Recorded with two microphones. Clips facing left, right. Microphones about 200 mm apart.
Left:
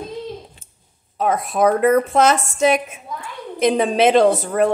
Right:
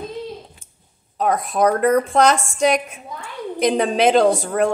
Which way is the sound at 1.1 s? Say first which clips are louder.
Even; centre (ahead or behind).